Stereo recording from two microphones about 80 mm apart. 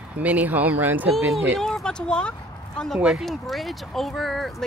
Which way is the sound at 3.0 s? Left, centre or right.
Centre.